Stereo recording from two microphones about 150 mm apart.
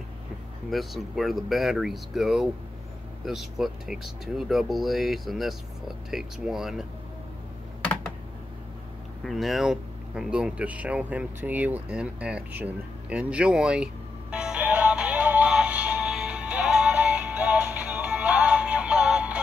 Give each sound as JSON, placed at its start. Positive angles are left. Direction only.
{"t": 0.7, "sound": "speech", "side_deg": 0}
{"t": 9.2, "sound": "speech", "side_deg": 0}
{"t": 14.3, "sound": "music", "side_deg": -5}